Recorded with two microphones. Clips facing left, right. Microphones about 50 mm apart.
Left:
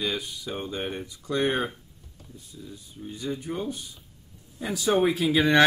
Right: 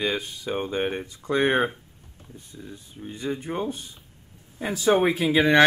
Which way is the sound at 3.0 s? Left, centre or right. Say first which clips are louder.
Right 2 dB; right.